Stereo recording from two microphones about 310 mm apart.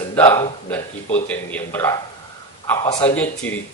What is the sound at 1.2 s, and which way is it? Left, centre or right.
Speech, centre.